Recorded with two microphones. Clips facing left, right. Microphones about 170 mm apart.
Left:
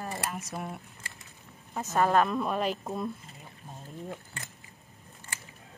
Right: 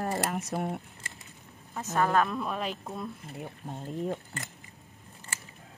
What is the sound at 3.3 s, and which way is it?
Speech, 65° right (ahead or behind).